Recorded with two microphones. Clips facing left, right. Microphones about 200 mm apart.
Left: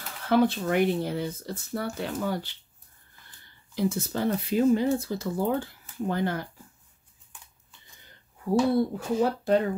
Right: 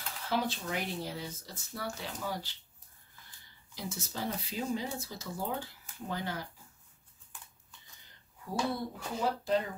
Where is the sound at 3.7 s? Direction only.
60° left (ahead or behind).